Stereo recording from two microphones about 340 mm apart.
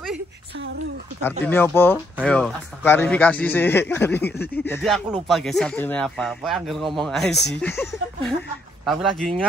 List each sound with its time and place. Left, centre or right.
1.4 s speech: centre
4.2 s a sound: left
4.6 s speech: centre